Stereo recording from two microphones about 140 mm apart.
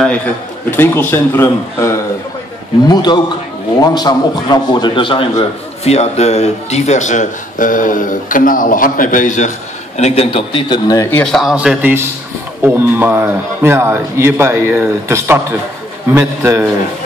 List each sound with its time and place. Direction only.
0.7 s speech: 15° left (ahead or behind)
2.9 s a man's voice: 30° left (ahead or behind)
5.9 s speech: 50° left (ahead or behind); by 9.5 s 65° left (ahead or behind)
9.9 s a man's voice: 50° left (ahead or behind); by 11.1 s 30° left (ahead or behind)
11.1 s speech: 10° left (ahead or behind)
11.3 s a man's voice: 5° right (ahead or behind)